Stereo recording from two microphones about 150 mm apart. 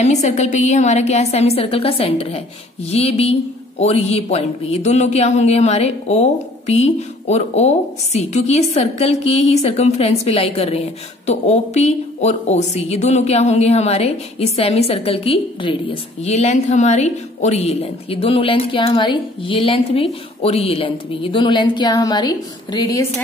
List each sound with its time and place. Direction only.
0.0 s speech: 50° left (ahead or behind); by 23.0 s 30° left (ahead or behind)